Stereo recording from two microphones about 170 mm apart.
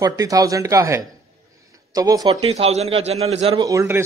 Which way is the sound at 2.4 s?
35° right (ahead or behind).